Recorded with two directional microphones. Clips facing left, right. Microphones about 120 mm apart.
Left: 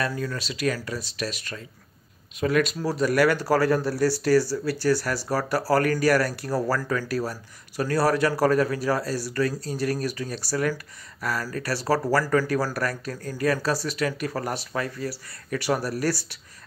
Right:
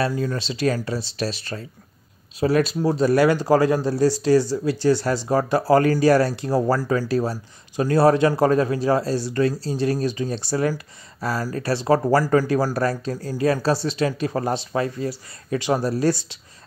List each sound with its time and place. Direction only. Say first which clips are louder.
0.1 s speech: right 5 dB; 25° right (ahead or behind)